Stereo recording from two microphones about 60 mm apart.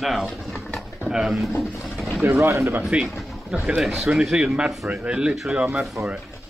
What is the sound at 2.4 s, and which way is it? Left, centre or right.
Speech, right.